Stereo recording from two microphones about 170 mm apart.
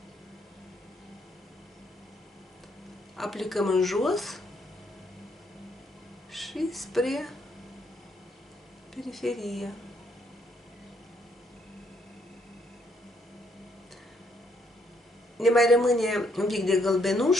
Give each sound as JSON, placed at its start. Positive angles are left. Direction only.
{"t": 3.2, "sound": "a man's voice", "side_deg": 0}
{"t": 6.3, "sound": "speech", "side_deg": 0}
{"t": 8.9, "sound": "a man's voice", "side_deg": 0}
{"t": 15.3, "sound": "a man's voice", "side_deg": 0}